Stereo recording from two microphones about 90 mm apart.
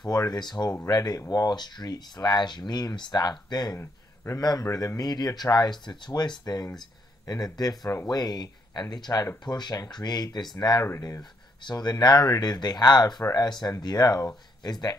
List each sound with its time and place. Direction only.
0.0 s speech: 45° left (ahead or behind)
3.7 s a sound: 30° left (ahead or behind)
4.4 s speech: 45° left (ahead or behind)